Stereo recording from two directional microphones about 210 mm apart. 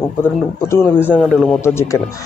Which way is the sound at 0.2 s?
10° left (ahead or behind).